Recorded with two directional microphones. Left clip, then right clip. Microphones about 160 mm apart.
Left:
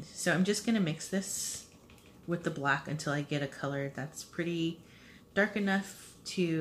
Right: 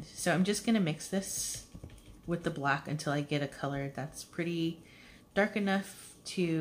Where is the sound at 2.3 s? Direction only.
25° right (ahead or behind).